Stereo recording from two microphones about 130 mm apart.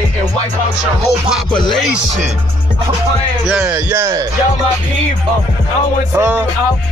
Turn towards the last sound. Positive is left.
turn(degrees=-20)  # may be behind; listen again after turning